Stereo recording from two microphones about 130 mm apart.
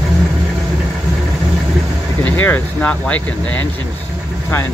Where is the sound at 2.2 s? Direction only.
15° left (ahead or behind).